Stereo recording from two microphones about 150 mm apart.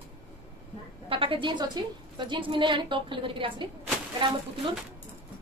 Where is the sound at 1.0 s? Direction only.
35° right (ahead or behind).